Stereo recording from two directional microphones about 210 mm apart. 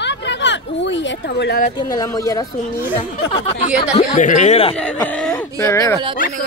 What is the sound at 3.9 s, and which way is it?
Speech, 35° left (ahead or behind).